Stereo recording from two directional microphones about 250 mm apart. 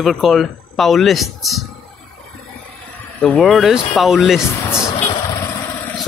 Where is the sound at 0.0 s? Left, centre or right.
Centre.